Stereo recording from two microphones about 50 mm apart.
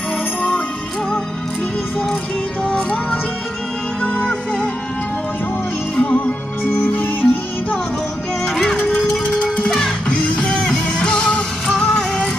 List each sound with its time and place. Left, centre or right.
2.6 s music: centre
4.0 s music: left
5.9 s music: left
8.7 s music: centre